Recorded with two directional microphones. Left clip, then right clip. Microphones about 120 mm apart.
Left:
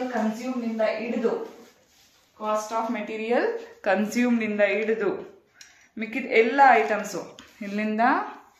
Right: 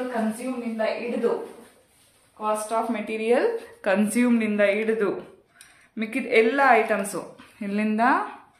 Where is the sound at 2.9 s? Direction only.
40° right (ahead or behind).